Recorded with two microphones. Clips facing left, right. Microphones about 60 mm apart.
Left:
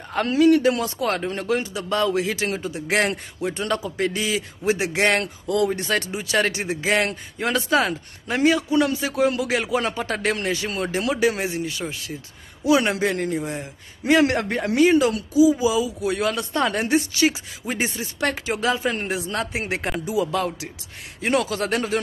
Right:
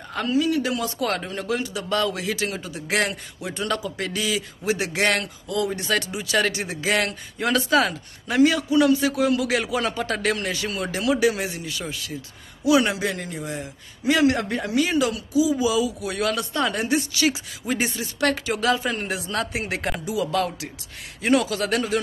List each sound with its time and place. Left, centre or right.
0.3 s speech: left
0.6 s a man's voice: left
5.2 s a man's voice: left
17.1 s a man's voice: left
21.3 s speech: left